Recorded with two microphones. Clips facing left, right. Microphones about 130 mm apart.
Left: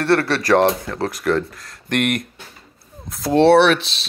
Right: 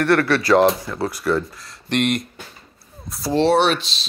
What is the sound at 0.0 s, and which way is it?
Speech, 35° left (ahead or behind).